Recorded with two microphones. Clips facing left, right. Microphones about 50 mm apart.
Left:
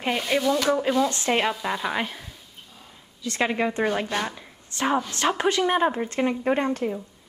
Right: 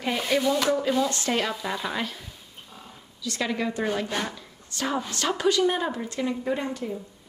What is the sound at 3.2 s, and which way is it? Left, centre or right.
Speech, left.